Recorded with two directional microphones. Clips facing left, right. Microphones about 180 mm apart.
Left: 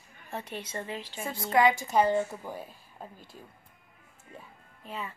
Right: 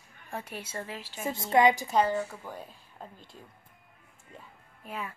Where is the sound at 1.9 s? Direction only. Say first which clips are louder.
Left 2 dB; 20° left (ahead or behind).